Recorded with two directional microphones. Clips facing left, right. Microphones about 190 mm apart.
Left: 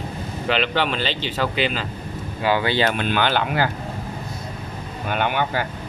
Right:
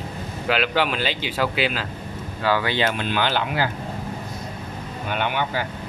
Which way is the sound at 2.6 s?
35° left (ahead or behind).